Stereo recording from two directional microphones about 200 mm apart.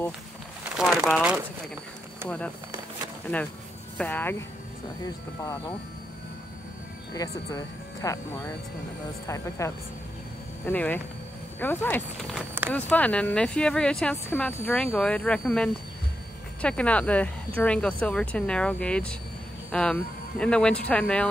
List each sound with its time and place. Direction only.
0.7 s speech: centre (ahead or behind)
4.0 s speech: 10° left (ahead or behind)
7.2 s speech: 15° left (ahead or behind)
9.6 s speech: 15° left (ahead or behind)